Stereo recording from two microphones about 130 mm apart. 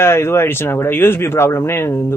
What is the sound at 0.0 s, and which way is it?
Speech, 20° left (ahead or behind).